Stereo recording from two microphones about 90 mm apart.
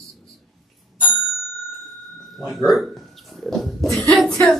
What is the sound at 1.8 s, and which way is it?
Bicycle bell, centre (ahead or behind).